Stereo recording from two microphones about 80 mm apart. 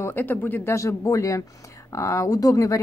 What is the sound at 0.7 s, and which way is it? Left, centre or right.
A woman's voice, left.